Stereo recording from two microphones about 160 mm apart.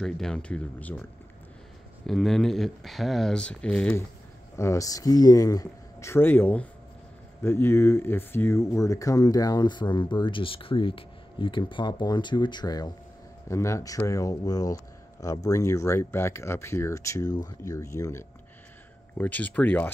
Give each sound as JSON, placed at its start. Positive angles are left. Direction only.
{"t": 0.0, "sound": "speech", "side_deg": 5}
{"t": 2.0, "sound": "speech", "side_deg": 0}
{"t": 4.6, "sound": "speech", "side_deg": 20}